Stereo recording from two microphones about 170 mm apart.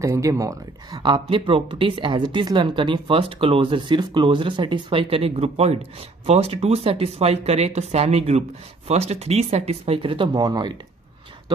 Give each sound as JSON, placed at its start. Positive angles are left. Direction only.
{"t": 0.0, "sound": "speech", "side_deg": -20}